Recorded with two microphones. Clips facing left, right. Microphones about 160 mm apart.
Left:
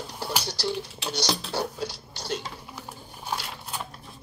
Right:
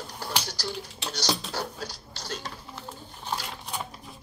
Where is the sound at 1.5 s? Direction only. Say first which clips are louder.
Left 4 dB; 30° left (ahead or behind).